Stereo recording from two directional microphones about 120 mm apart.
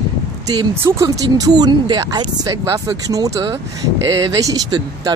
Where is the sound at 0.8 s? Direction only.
25° right (ahead or behind).